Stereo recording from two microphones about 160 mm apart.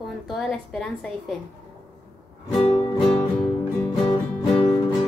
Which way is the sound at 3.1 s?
5° left (ahead or behind).